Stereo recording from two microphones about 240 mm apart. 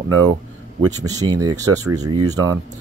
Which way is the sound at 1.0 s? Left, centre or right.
Centre.